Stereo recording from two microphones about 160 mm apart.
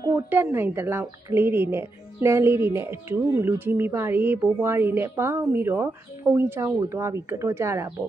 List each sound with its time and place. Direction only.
0.1 s speech: 10° right (ahead or behind)